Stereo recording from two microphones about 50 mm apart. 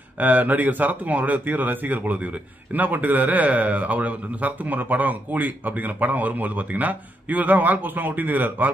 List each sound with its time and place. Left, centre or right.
0.2 s a man's voice: right